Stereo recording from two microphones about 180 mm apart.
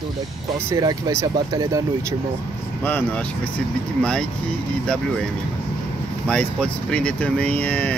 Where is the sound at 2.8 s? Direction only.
10° left (ahead or behind).